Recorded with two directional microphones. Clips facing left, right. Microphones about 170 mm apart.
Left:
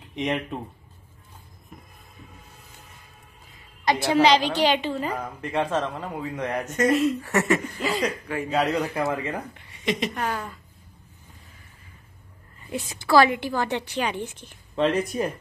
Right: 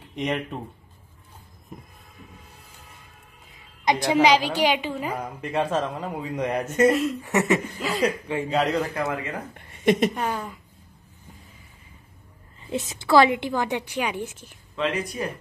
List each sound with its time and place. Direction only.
0.1 s speech: centre (ahead or behind)
3.8 s a woman's voice: 20° right (ahead or behind); by 7.2 s centre (ahead or behind)
7.2 s speech: 20° right (ahead or behind)
7.5 s speech: centre (ahead or behind)
9.5 s speech: 50° right (ahead or behind)
10.1 s a woman's voice: 10° right (ahead or behind)
12.6 s a woman's voice: 20° right (ahead or behind)